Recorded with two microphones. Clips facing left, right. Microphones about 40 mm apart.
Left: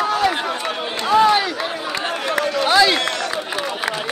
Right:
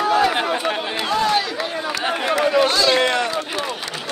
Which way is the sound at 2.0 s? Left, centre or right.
Centre.